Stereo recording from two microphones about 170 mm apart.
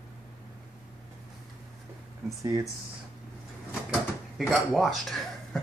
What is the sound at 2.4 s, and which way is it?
Speech, 20° right (ahead or behind).